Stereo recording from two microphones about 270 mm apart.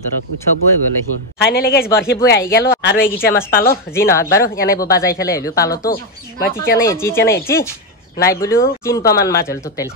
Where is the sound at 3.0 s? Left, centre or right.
Centre.